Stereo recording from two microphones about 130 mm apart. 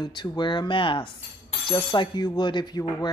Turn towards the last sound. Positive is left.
turn(degrees=35)  # may be behind; listen again after turning